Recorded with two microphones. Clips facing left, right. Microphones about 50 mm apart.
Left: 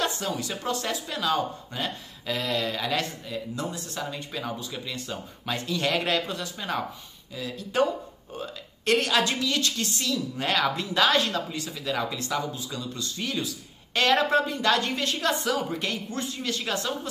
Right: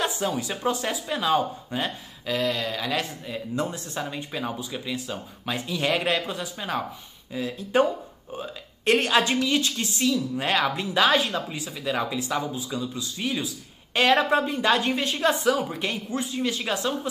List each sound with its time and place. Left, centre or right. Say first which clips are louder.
0.0 s speech: right 2 dB; centre
2.2 s speech: right 2 dB; centre
3.3 s speech: right 3 dB; right; by 6.8 s centre
7.3 s a woman's voice: right 3 dB; right
10.3 s speech: right 1 dB; centre
14.4 s speech: right 2 dB; centre